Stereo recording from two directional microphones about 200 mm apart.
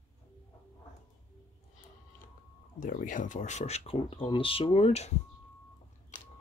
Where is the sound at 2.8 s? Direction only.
40° left (ahead or behind).